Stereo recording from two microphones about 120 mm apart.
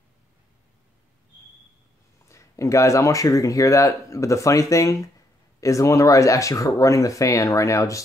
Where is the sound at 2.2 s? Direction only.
25° left (ahead or behind).